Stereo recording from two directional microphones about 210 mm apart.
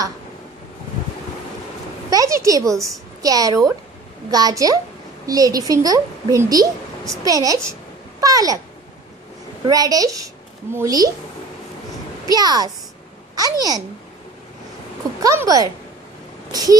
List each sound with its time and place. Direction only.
2.0 s a sound: 15° right (ahead or behind)
3.2 s a woman's voice: 15° right (ahead or behind)
9.7 s a woman's voice: 15° right (ahead or behind)
12.3 s a woman's voice: 20° right (ahead or behind)
15.2 s a woman's voice: 15° right (ahead or behind)